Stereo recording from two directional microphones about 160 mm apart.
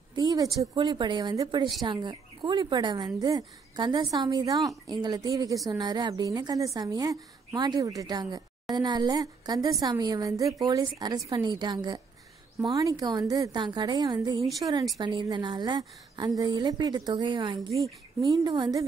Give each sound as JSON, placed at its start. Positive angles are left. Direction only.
{"t": 0.1, "sound": "speech", "side_deg": -25}